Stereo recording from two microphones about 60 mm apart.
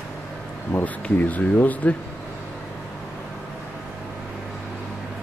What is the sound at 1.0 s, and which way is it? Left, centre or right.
Speech, left.